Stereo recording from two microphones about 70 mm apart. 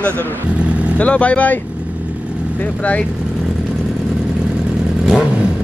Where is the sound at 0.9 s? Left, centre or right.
Centre.